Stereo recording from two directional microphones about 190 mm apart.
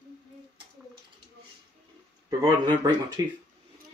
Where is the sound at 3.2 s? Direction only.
20° right (ahead or behind).